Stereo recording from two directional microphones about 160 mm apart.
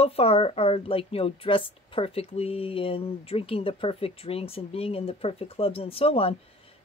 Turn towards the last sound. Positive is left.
turn(degrees=35)  # may be behind; listen again after turning